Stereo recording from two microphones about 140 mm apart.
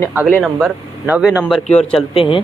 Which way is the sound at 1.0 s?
10° right (ahead or behind).